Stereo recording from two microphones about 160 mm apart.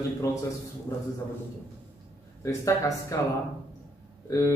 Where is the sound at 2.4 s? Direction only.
20° left (ahead or behind).